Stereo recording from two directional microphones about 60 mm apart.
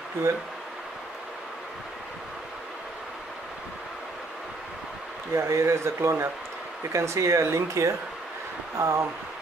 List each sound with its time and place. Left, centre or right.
5.3 s speech: right
6.9 s speech: right